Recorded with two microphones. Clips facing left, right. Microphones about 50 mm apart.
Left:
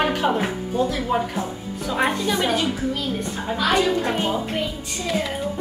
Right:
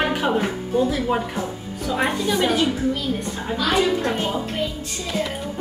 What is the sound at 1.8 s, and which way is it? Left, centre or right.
A woman's voice, centre.